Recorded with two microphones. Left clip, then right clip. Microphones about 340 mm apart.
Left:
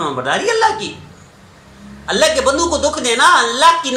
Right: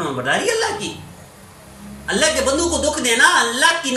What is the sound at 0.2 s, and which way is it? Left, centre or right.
Speech, left.